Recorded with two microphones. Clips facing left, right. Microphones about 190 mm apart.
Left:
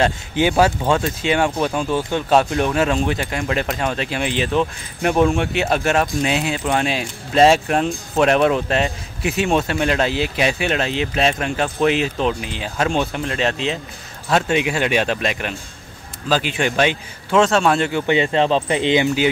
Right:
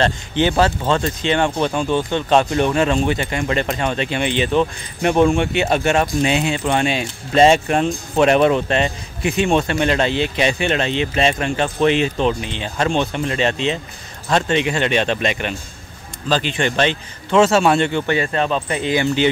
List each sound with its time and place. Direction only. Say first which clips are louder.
0.0 s speech: even; 10° left (ahead or behind)
17.4 s speech: right 2 dB; 5° right (ahead or behind)
18.0 s speech: left 2 dB; 20° left (ahead or behind)